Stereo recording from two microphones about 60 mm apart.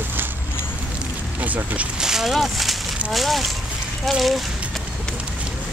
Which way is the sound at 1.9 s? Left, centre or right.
Centre.